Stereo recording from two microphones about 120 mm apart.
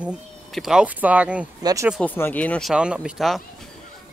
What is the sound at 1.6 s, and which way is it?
Speech, 30° right (ahead or behind).